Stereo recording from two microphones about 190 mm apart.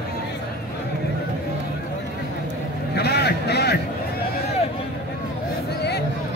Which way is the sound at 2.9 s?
60° left (ahead or behind).